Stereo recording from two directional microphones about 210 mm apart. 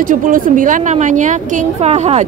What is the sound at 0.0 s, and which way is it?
A woman's voice, 40° right (ahead or behind).